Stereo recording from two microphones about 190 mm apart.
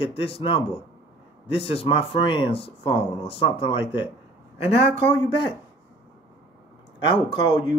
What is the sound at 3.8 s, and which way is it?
Speech, 10° right (ahead or behind).